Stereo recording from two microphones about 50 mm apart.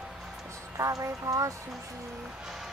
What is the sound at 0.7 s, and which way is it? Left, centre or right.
Speech, right.